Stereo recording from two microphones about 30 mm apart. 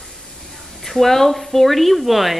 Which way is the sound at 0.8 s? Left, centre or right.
Centre.